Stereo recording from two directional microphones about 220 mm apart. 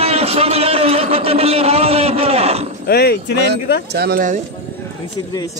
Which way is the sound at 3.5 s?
50° right (ahead or behind).